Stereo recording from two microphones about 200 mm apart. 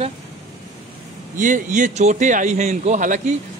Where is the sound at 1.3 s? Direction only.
40° right (ahead or behind).